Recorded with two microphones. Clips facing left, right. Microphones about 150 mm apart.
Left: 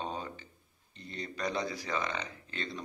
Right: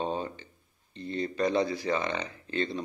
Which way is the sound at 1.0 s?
25° right (ahead or behind).